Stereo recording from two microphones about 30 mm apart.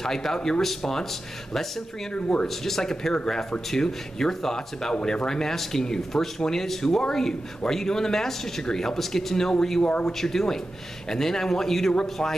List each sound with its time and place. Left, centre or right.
0.0 s speech: centre
2.4 s speech: centre